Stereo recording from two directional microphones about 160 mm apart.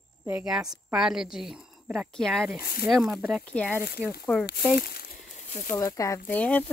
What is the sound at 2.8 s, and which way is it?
Speech, centre (ahead or behind).